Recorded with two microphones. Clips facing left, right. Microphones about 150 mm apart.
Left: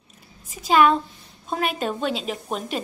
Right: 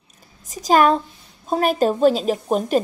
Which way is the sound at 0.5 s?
40° right (ahead or behind).